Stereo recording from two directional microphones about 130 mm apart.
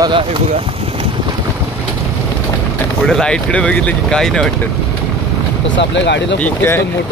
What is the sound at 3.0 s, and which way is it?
Speech, 5° left (ahead or behind).